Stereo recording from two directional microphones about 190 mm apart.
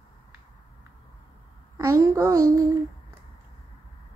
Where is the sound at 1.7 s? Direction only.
15° right (ahead or behind).